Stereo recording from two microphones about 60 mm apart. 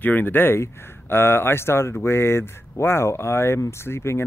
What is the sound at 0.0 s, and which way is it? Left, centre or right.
Speech, left.